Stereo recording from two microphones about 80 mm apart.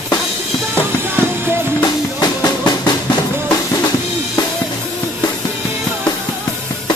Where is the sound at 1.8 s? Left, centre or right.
Left.